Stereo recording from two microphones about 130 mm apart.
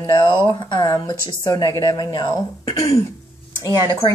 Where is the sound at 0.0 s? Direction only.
35° left (ahead or behind).